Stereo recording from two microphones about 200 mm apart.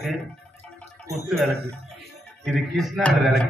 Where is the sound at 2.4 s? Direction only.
Centre (ahead or behind).